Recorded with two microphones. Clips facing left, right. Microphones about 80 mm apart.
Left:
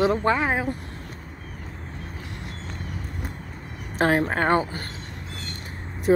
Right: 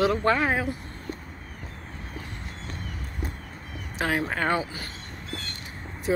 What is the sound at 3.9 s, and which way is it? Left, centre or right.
Speech, left.